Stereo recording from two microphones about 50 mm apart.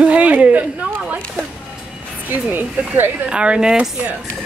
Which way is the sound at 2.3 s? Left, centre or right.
Right.